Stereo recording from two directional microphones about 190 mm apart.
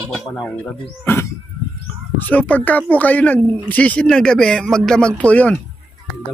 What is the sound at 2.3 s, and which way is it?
Speech, 10° left (ahead or behind).